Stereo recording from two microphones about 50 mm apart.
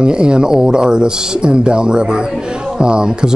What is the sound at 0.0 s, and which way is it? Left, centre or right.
Speech, centre.